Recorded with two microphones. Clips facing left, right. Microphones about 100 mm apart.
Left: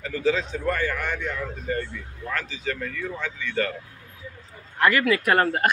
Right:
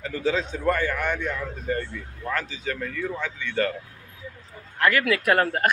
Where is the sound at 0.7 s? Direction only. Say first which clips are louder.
Right 3 dB; 20° right (ahead or behind).